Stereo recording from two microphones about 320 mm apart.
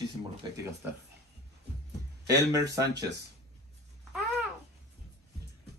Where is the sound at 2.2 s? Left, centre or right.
Centre.